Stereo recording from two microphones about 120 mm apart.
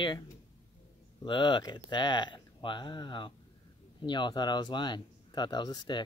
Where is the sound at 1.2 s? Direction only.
40° left (ahead or behind).